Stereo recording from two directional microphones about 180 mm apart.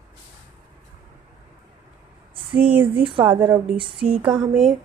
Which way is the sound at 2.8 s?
30° right (ahead or behind).